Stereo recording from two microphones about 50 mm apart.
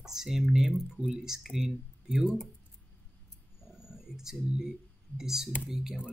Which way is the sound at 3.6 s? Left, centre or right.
Centre.